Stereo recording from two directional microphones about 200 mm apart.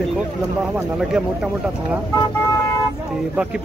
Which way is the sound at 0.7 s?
5° right (ahead or behind).